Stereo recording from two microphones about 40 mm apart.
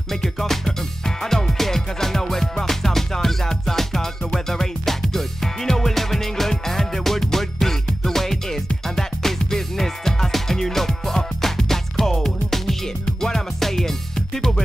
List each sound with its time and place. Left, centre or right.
0.1 s music: centre